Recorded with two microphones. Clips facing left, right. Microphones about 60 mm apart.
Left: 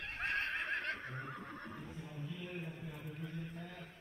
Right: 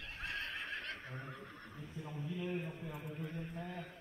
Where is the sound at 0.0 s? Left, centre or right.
Left.